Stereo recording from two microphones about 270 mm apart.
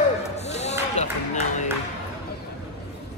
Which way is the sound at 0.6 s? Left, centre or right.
Left.